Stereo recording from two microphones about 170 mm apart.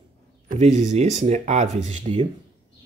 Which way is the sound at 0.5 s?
45° right (ahead or behind).